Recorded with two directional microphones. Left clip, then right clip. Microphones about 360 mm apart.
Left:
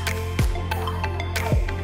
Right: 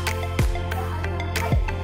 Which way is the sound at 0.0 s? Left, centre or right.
Centre.